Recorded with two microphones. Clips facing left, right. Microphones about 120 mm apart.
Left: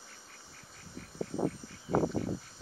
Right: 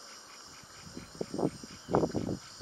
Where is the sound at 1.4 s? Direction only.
20° right (ahead or behind).